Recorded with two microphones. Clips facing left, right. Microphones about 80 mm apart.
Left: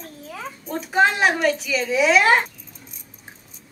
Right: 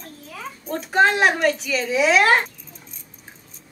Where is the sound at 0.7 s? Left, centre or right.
Centre.